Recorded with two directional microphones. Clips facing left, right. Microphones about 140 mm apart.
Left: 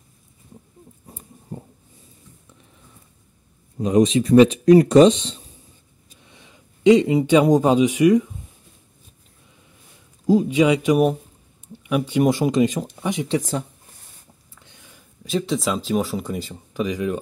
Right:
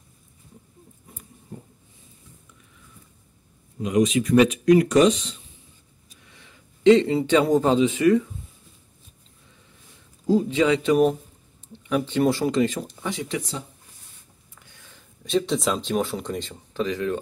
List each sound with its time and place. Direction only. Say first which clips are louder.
1.1 s a sound: left 5 dB; 35° left (ahead or behind)
3.7 s speech: left 4 dB; 35° left (ahead or behind)
6.2 s speech: left 3 dB; 20° left (ahead or behind)
10.2 s speech: left 3 dB; 15° left (ahead or behind)
14.6 s a sound: left 1 dB; 20° left (ahead or behind)
15.2 s speech: even; centre (ahead or behind)